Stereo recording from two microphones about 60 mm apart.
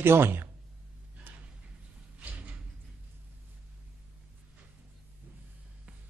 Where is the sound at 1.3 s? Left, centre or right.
Right.